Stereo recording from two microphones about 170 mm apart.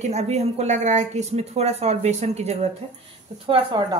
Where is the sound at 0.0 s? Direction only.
40° right (ahead or behind).